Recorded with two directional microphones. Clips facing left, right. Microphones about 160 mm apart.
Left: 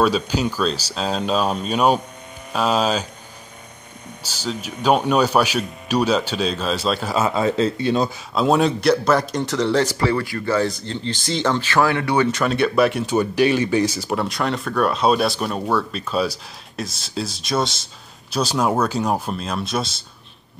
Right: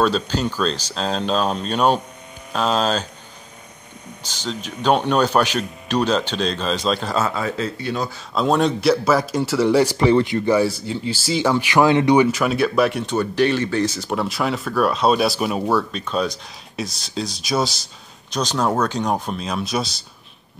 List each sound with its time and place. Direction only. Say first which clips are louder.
0.0 s speech: left 1 dB; 10° left (ahead or behind)
4.2 s speech: left 1 dB; 10° left (ahead or behind)
7.2 s speech: left 5 dB; 25° left (ahead or behind)
8.4 s speech: left 1 dB; 5° left (ahead or behind); by 12.3 s 20° right (ahead or behind)
12.3 s speech: even; 5° right (ahead or behind)
13.1 s speech: left 1 dB; 10° left (ahead or behind)